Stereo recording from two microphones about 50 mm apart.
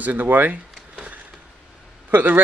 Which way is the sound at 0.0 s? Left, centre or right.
Right.